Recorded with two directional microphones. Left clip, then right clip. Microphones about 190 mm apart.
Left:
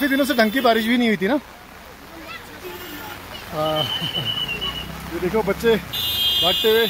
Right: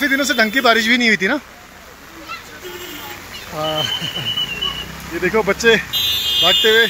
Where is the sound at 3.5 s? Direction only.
5° left (ahead or behind).